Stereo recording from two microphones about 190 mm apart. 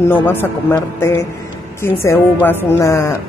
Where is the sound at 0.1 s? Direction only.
10° left (ahead or behind).